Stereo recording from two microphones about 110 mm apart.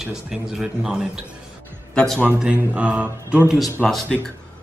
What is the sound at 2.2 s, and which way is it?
Speech, 10° right (ahead or behind).